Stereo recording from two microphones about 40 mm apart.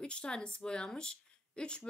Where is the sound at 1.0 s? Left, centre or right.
Left.